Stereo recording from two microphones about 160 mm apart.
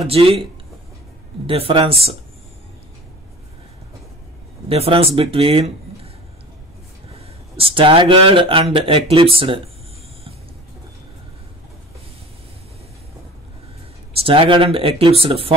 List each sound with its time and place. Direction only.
0.0 s speech: 35° right (ahead or behind)
1.5 s speech: 35° right (ahead or behind)
4.6 s speech: 35° right (ahead or behind)
7.5 s speech: 35° right (ahead or behind)
14.1 s speech: 35° right (ahead or behind)